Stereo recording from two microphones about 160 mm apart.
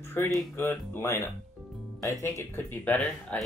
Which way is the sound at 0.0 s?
15° left (ahead or behind).